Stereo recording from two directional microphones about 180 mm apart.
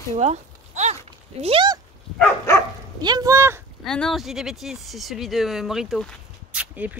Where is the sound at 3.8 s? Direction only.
Centre (ahead or behind).